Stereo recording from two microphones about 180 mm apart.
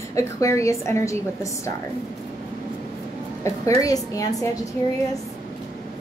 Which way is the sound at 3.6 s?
20° left (ahead or behind).